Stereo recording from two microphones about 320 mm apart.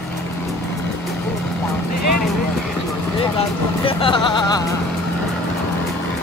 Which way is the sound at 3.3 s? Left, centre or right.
Centre.